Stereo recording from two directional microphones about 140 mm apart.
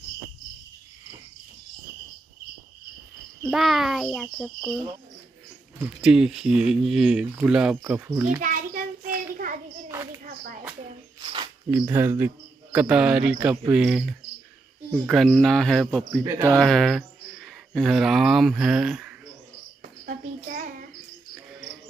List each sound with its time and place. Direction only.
3.4 s a child's voice: centre (ahead or behind)
5.9 s a child's voice: 5° right (ahead or behind)
7.9 s cricket: 15° right (ahead or behind)
8.4 s child singing: 70° right (ahead or behind)
9.8 s a sound: 20° right (ahead or behind)
10.2 s a sound: 70° right (ahead or behind)
11.1 s a sound: 35° right (ahead or behind)
11.7 s speech: 20° right (ahead or behind)
12.7 s cricket: 10° right (ahead or behind)
15.0 s a child's voice: centre (ahead or behind)
16.3 s speech: 25° right (ahead or behind)
16.5 s speech: 5° left (ahead or behind)
20.1 s child singing: 70° right (ahead or behind)